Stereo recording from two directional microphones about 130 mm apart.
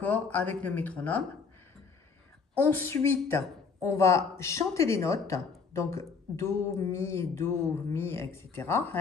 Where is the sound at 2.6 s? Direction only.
15° left (ahead or behind).